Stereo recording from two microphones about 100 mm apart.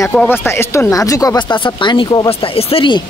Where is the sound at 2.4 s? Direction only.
65° left (ahead or behind).